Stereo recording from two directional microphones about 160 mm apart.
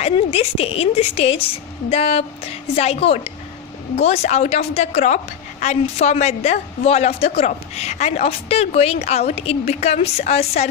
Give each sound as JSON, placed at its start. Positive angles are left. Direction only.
{"t": 0.0, "sound": "a woman's voice", "side_deg": 40}